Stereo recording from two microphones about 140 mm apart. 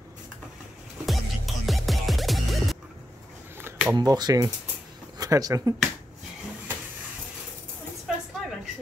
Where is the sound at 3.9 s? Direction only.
30° right (ahead or behind).